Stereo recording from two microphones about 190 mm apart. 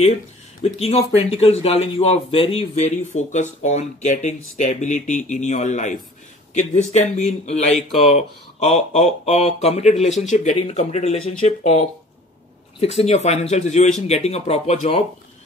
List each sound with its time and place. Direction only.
0.7 s speech: 30° left (ahead or behind)